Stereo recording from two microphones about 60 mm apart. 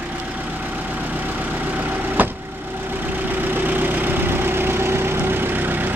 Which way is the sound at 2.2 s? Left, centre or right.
Right.